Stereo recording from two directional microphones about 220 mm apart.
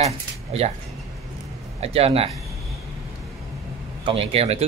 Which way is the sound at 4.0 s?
25° right (ahead or behind).